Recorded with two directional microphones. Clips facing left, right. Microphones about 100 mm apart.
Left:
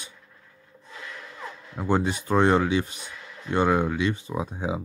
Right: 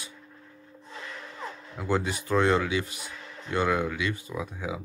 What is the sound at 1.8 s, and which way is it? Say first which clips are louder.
Speech: left 4 dB; 25° left (ahead or behind).